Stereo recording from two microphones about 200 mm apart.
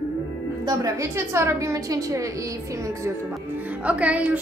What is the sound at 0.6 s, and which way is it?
A woman's voice, 15° right (ahead or behind).